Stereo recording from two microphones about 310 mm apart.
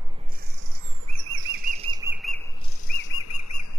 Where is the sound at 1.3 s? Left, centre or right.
Right; by 2.1 s centre.